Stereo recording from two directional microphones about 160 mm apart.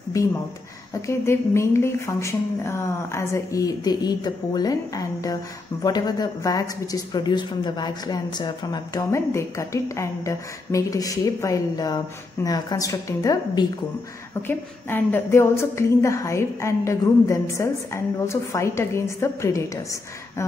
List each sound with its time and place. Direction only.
1.0 s a woman's voice: 15° left (ahead or behind)
9.1 s a woman's voice: 15° left (ahead or behind)